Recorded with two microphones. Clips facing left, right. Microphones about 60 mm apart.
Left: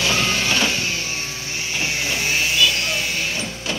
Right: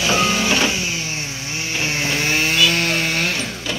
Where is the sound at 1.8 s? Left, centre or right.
Right.